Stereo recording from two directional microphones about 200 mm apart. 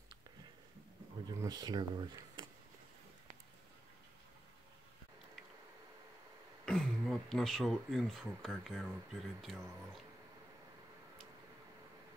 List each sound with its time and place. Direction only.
1.2 s speech: 20° right (ahead or behind)
6.6 s speech: 5° left (ahead or behind)